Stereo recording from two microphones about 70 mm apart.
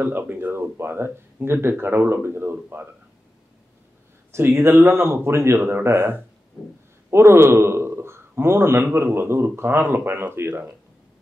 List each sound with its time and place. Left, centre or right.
0.0 s speech: right
4.3 s a man's voice: right